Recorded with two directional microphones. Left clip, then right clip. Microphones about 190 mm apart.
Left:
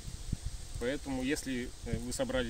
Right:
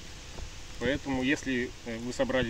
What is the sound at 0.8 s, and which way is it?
Speech, 35° left (ahead or behind).